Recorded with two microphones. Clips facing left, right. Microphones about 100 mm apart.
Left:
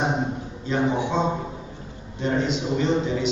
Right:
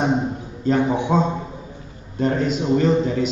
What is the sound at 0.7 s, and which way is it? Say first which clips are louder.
A man's voice: right 5 dB; 45° right (ahead or behind).